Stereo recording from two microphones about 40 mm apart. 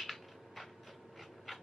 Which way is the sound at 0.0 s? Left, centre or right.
Centre.